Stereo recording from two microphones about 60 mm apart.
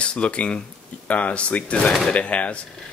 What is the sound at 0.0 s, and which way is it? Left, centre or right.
Speech, centre.